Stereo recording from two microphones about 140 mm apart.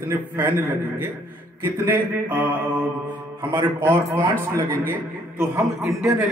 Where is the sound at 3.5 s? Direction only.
20° right (ahead or behind).